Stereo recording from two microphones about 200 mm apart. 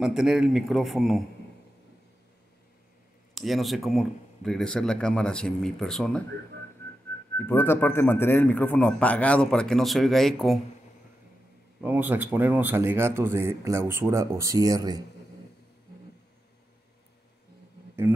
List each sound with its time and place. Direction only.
0.0 s speech: centre (ahead or behind)
3.3 s speech: centre (ahead or behind)
7.3 s a man's voice: 10° left (ahead or behind)
11.8 s speech: 10° right (ahead or behind)